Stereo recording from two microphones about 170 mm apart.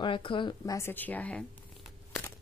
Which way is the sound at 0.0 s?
30° left (ahead or behind).